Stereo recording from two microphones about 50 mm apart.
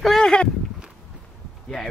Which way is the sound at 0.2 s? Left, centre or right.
Centre.